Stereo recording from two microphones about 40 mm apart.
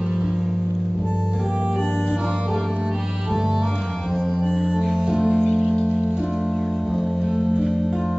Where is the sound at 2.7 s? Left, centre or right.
Centre.